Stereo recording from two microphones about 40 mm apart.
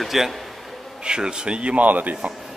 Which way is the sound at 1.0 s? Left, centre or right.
Right.